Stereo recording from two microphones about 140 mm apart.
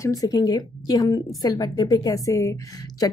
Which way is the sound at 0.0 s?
25° left (ahead or behind).